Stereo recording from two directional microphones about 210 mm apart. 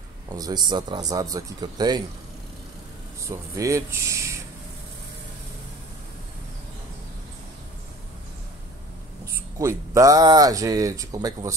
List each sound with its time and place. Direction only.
0.3 s a man's voice: 20° right (ahead or behind)
3.3 s speech: 15° right (ahead or behind)
9.6 s speech: 15° right (ahead or behind)